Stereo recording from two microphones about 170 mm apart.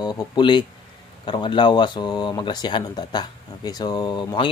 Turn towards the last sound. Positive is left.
turn(degrees=25)  # may be behind; listen again after turning